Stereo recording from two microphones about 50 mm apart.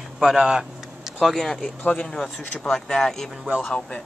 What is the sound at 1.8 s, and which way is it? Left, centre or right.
Speech, left.